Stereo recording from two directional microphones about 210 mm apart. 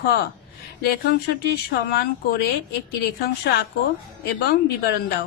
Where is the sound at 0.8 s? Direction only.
50° left (ahead or behind).